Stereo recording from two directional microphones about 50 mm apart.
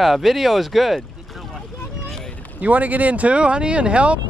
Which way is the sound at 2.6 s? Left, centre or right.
Right.